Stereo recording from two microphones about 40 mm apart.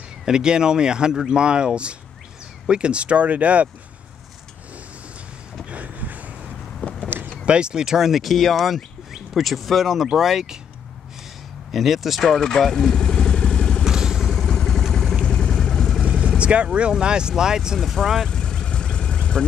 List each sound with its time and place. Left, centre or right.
0.2 s speech: centre; by 3.6 s right
5.7 s vehicle: right
6.8 s a sound: left
7.4 s speech: right
11.7 s speech: centre
12.2 s vehicle: centre
13.8 s vehicle: centre
14.5 s vehicle: centre
16.1 s vehicle: right
16.9 s speech: right
17.7 s speech: centre
18.3 s vehicle: centre